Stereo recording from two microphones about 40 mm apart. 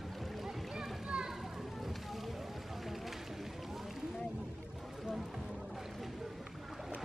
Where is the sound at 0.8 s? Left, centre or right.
Centre.